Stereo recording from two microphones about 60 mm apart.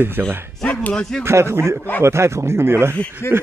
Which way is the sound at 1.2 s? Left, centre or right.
Right.